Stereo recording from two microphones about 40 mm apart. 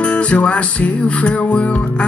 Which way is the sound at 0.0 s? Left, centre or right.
Left.